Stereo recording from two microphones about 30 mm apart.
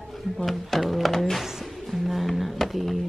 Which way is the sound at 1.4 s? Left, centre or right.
Centre.